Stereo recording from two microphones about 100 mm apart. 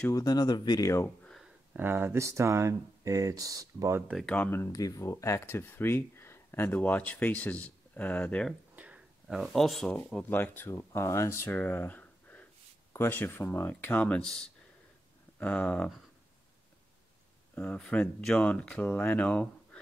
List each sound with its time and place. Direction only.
0.1 s speech: 40° left (ahead or behind)
1.3 s a sound: 5° right (ahead or behind)
1.8 s speech: 20° right (ahead or behind)
4.3 s speech: 20° left (ahead or behind)
4.7 s speech: 35° left (ahead or behind); by 8.5 s 10° left (ahead or behind)
8.7 s a sound: 15° right (ahead or behind)
9.4 s speech: 5° left (ahead or behind)
10.3 s speech: 20° left (ahead or behind)
17.6 s speech: 10° left (ahead or behind)